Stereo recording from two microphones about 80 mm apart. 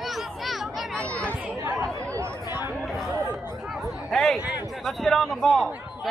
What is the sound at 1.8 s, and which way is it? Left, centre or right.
Chatter, right.